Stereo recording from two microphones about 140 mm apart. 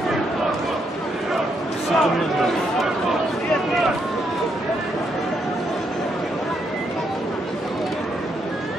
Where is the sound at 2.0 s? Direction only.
Centre (ahead or behind).